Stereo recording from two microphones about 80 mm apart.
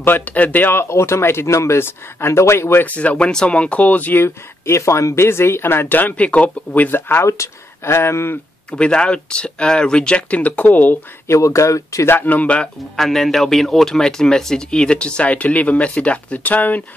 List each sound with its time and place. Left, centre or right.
0.0 s speech: left
2.8 s speech: centre
8.7 s speech: centre
11.2 s speech: left; by 13.0 s centre
13.0 s speech: centre